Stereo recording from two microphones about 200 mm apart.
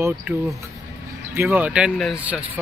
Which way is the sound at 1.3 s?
10° right (ahead or behind).